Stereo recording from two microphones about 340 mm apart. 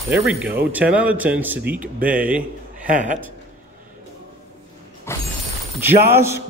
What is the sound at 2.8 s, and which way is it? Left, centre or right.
Speech, right.